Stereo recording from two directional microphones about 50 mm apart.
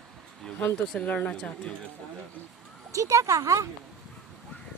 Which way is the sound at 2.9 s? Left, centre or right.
Right.